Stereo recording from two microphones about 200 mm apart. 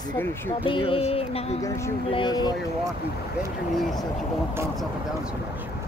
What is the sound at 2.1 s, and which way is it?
Music, 20° left (ahead or behind).